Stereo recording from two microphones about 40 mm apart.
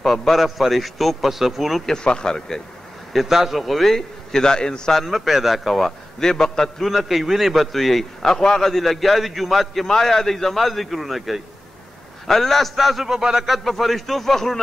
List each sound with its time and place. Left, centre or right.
0.0 s a man's voice: centre
1.9 s a man's voice: centre
3.3 s a man's voice: centre
3.9 s a man's voice: centre
4.9 s a man's voice: centre
6.1 s a man's voice: centre
6.8 s a man's voice: centre
9.8 s a man's voice: centre
13.7 s a man's voice: centre